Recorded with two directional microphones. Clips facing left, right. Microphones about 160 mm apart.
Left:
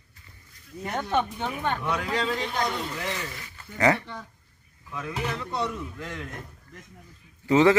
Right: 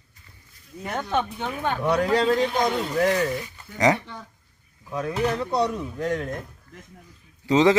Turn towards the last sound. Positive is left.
turn(degrees=-20)  # may be behind; listen again after turning